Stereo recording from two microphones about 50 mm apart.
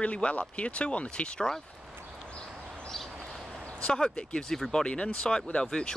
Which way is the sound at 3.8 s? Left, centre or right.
Centre.